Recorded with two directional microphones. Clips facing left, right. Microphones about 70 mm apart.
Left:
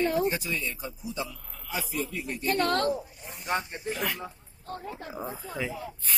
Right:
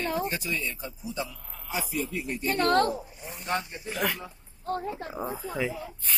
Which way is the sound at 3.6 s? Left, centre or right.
Left.